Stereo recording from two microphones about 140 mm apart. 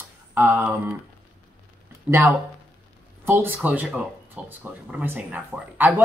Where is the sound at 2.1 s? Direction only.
10° right (ahead or behind).